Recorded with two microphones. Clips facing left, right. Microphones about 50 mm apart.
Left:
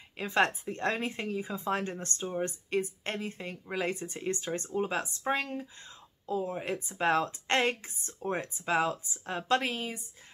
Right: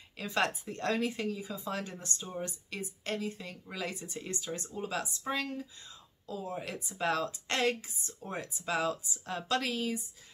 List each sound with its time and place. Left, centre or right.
0.2 s a woman's voice: left